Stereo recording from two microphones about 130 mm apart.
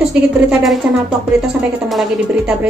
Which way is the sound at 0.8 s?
10° right (ahead or behind).